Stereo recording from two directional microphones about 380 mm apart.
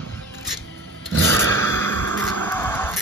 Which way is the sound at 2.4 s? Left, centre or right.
Centre.